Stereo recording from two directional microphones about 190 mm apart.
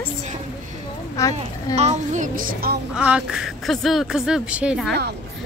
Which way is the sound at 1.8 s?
40° right (ahead or behind).